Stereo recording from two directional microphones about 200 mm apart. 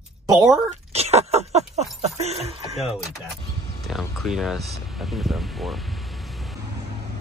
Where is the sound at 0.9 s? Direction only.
30° right (ahead or behind).